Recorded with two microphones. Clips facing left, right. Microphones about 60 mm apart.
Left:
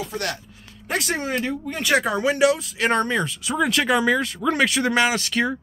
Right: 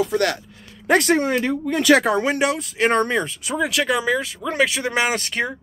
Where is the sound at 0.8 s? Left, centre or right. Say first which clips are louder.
Right 8 dB; right.